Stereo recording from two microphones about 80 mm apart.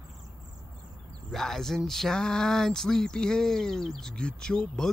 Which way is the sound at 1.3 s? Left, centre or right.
Centre.